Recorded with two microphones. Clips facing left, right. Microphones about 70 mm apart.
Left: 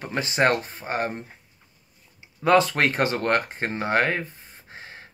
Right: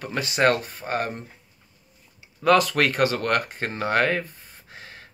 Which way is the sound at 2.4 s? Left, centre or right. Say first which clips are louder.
Even; left.